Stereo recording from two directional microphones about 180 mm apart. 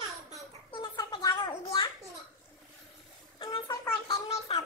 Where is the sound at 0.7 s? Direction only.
25° left (ahead or behind).